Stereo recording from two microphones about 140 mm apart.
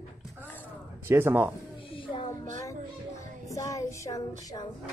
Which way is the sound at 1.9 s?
35° left (ahead or behind).